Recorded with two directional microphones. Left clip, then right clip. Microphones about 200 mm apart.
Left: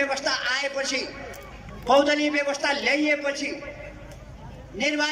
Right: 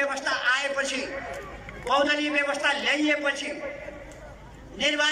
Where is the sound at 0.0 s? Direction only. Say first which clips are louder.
Even; 30° left (ahead or behind).